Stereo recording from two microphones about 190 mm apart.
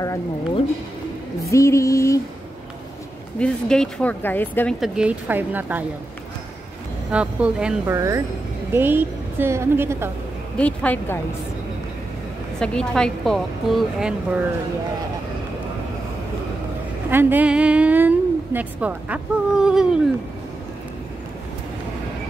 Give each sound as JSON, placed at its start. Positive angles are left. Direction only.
{"t": 1.5, "sound": "speech", "side_deg": 15}
{"t": 3.3, "sound": "speech", "side_deg": 5}
{"t": 4.7, "sound": "a woman's voice", "side_deg": -5}
{"t": 7.1, "sound": "a woman's voice", "side_deg": -5}
{"t": 10.6, "sound": "speech", "side_deg": 5}
{"t": 12.5, "sound": "a woman's voice", "side_deg": 5}
{"t": 17.1, "sound": "a woman's voice", "side_deg": -10}